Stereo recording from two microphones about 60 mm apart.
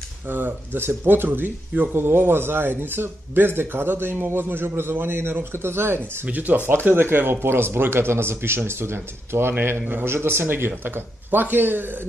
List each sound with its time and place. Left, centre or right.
0.3 s speech: right
6.2 s speech: right